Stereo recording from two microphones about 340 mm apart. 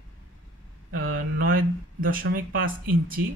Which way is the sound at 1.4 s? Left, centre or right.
Right.